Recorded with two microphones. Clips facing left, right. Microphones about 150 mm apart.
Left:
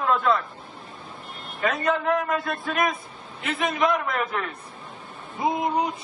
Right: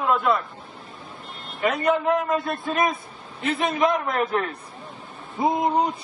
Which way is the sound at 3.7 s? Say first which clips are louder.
Right 1 dB; 40° right (ahead or behind).